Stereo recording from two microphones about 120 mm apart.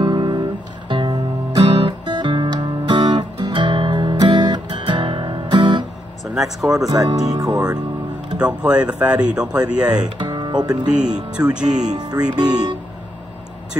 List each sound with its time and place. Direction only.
0.0 s music: 35° right (ahead or behind)
6.2 s speech: 5° right (ahead or behind)
6.9 s speech: 35° right (ahead or behind)
8.4 s speech: 10° right (ahead or behind)
10.1 s speech: 40° right (ahead or behind)
11.1 s speech: 10° right (ahead or behind)
11.8 s speech: 35° right (ahead or behind)